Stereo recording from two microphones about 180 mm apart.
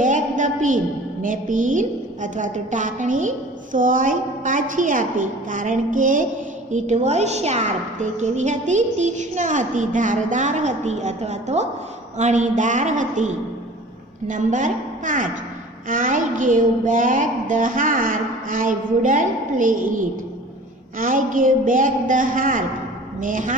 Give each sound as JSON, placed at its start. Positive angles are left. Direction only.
{"t": 0.0, "sound": "a sound", "side_deg": -45}
{"t": 1.2, "sound": "a woman's voice", "side_deg": -45}
{"t": 21.0, "sound": "a woman's voice", "side_deg": -50}